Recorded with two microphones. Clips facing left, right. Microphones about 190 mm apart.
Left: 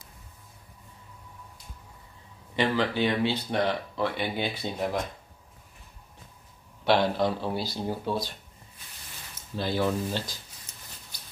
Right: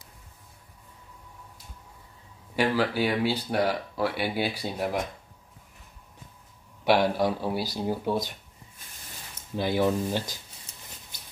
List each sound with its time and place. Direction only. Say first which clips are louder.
2.5 s speech: right 1 dB; 5° right (ahead or behind)
6.8 s speech: right 1 dB; 10° right (ahead or behind)
9.6 s speech: right 2 dB; 15° right (ahead or behind)